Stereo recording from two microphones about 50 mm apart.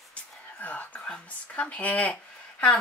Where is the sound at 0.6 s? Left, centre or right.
Left.